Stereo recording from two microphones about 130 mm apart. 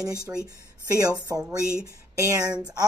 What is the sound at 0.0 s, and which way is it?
Speech, 30° right (ahead or behind).